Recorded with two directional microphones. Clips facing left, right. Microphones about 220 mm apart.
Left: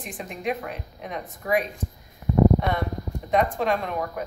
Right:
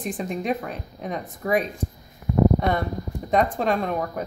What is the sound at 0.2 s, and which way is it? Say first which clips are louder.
Speech: right 1 dB; 35° right (ahead or behind).